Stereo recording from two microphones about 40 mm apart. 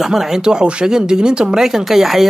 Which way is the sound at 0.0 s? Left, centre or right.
Centre.